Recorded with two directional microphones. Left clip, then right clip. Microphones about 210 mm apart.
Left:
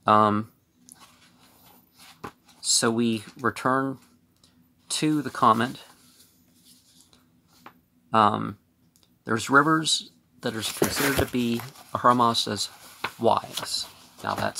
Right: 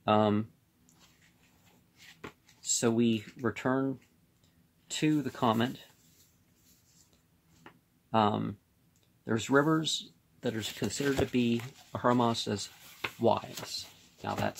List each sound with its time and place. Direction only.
0.0 s speech: 10° left (ahead or behind)
2.7 s speech: 5° left (ahead or behind)
8.1 s speech: 10° left (ahead or behind)
13.0 s a sound: 25° left (ahead or behind)
13.7 s speech: 5° right (ahead or behind)